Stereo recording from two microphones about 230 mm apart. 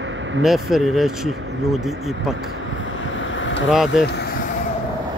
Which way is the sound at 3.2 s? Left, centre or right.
Left.